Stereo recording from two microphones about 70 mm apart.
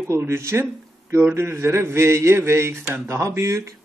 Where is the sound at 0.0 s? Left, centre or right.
Right.